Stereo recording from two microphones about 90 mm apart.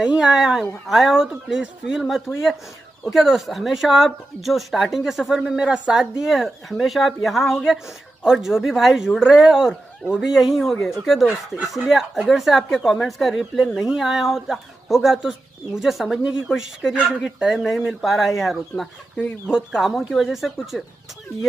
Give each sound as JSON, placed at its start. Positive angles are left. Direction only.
{"t": 0.0, "sound": "a woman's voice", "side_deg": -5}
{"t": 19.1, "sound": "speech", "side_deg": 15}
{"t": 19.5, "sound": "a woman's voice", "side_deg": -5}